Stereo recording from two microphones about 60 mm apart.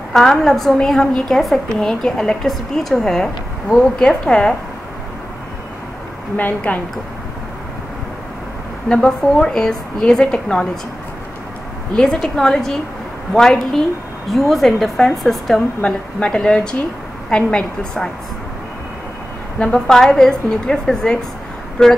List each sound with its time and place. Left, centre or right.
0.1 s a woman's voice: centre
6.3 s a woman's voice: left
8.8 s a woman's voice: centre
11.9 s a woman's voice: centre
19.7 s a woman's voice: centre